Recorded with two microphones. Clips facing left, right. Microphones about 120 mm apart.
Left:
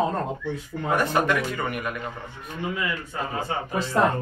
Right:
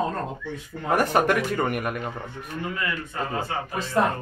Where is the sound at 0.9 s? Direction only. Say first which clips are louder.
Right 2 dB; 50° right (ahead or behind).